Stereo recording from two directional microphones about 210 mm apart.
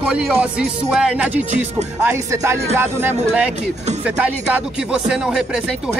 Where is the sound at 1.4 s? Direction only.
35° right (ahead or behind).